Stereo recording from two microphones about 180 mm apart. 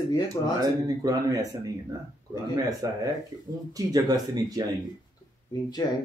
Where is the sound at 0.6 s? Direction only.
20° right (ahead or behind).